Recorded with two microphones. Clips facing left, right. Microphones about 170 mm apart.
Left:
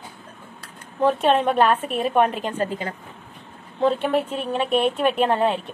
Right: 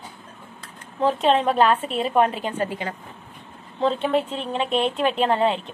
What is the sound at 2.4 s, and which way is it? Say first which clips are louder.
Speech: left 1 dB; 10° right (ahead or behind).